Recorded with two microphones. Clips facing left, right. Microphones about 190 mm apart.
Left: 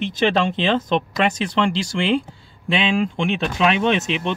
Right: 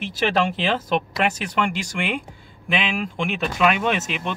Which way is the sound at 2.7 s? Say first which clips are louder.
Left 5 dB; 30° left (ahead or behind).